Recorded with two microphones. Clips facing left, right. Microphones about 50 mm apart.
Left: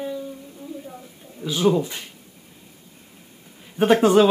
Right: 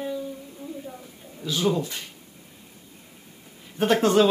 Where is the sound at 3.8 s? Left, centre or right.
Centre.